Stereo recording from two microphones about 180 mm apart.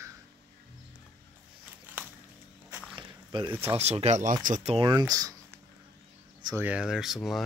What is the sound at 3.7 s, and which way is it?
Speech, 35° right (ahead or behind).